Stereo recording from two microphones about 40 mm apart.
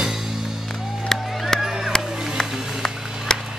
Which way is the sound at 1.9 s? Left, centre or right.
Centre.